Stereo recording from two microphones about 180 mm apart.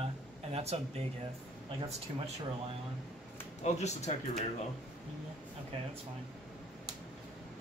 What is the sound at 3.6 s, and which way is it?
Speech, 40° left (ahead or behind).